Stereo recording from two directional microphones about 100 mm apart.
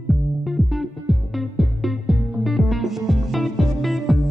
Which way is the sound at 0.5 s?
Centre (ahead or behind).